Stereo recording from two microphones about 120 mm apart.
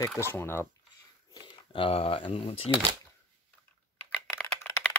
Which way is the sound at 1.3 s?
45° left (ahead or behind).